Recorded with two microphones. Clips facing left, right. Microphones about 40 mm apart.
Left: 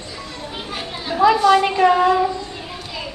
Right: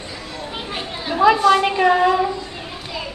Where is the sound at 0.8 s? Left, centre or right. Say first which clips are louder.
Left 1 dB; centre.